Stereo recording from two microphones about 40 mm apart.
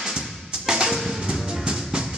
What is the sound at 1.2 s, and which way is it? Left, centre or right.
Music, centre.